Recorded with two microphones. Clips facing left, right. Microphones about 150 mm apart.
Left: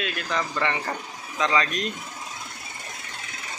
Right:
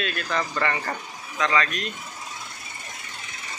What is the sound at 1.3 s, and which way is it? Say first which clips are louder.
Speech: even; 25° left (ahead or behind).